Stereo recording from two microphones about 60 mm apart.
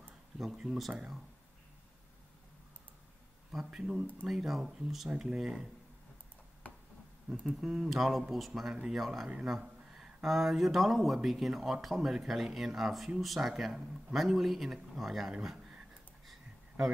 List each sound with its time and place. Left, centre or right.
0.4 s speech: centre
3.5 s speech: centre
6.6 s a sound: left
7.3 s speech: centre